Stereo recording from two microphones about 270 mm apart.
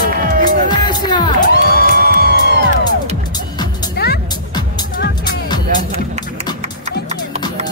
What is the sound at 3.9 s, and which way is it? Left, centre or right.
Music, left.